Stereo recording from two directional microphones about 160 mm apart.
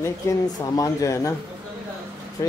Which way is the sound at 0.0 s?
20° left (ahead or behind).